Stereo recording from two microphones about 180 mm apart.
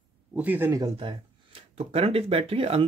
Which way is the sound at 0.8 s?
25° right (ahead or behind).